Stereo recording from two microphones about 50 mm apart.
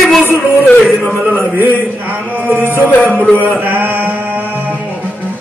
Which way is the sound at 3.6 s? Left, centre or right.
Right.